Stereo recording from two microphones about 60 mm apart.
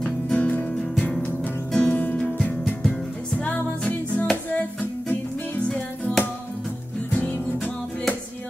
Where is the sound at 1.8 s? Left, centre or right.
Left.